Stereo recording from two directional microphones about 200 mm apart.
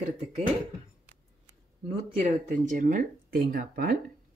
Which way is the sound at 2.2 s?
40° right (ahead or behind).